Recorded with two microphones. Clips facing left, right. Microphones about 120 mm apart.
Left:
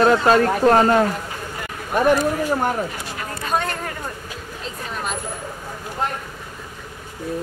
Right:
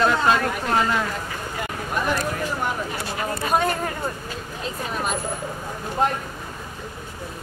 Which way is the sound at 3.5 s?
10° right (ahead or behind).